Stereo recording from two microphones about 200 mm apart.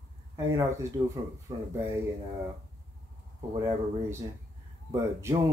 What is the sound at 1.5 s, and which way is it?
Speech, 20° right (ahead or behind).